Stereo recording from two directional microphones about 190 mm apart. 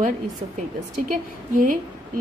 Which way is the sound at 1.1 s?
45° right (ahead or behind).